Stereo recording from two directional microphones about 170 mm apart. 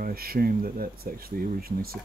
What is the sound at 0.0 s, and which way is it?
Speech, 60° right (ahead or behind).